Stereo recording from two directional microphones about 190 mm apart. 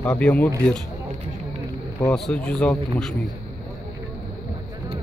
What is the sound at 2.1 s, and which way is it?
Speech, 5° left (ahead or behind).